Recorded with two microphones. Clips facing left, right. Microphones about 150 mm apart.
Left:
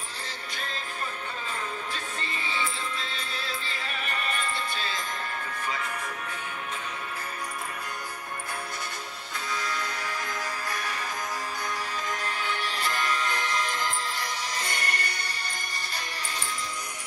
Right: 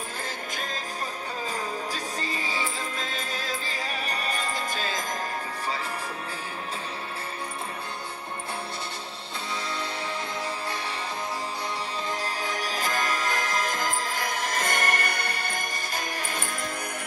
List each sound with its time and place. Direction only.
2.4 s music: 40° right (ahead or behind)
9.6 s music: 25° right (ahead or behind)
12.1 s music: 35° right (ahead or behind); by 15.6 s 55° right (ahead or behind)